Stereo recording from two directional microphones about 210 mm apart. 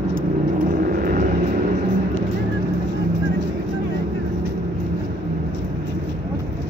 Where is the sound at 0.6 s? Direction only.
40° right (ahead or behind).